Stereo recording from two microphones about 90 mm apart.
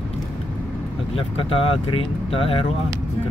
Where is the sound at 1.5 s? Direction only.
90° left.